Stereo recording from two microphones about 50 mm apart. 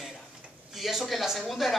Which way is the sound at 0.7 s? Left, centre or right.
Centre.